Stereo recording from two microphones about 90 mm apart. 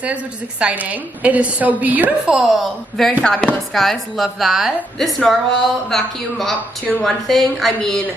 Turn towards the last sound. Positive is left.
turn(degrees=5)  # may be behind; listen again after turning